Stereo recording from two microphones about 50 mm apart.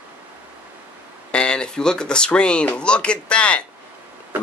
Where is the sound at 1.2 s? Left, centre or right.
Centre.